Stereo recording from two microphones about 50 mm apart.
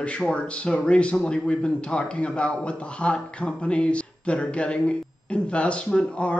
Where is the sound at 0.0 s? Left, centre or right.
Left.